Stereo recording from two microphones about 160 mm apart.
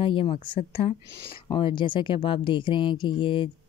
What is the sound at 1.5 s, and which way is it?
Speech, 30° left (ahead or behind).